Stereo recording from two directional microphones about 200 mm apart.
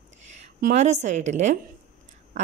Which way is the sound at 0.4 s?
40° right (ahead or behind).